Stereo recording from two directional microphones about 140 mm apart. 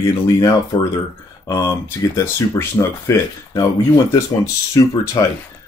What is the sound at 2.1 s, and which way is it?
Speech, 20° left (ahead or behind).